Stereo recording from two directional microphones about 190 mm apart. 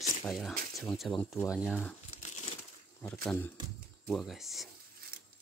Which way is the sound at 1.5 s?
5° right (ahead or behind).